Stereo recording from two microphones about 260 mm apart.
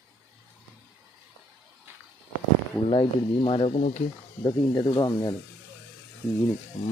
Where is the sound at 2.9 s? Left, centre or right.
Left.